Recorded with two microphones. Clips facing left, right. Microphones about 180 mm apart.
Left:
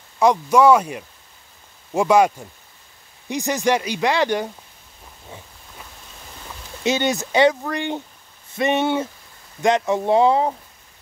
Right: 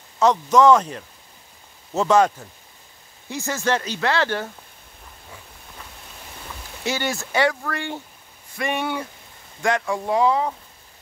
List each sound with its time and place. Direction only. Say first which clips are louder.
0.2 s speech: left 1 dB; 10° left (ahead or behind)
6.8 s speech: left 5 dB; 20° left (ahead or behind)